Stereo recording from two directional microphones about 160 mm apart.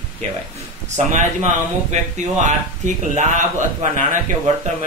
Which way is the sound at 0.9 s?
45° right (ahead or behind).